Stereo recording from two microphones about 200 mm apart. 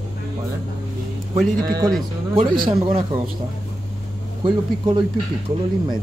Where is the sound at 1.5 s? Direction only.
50° right (ahead or behind).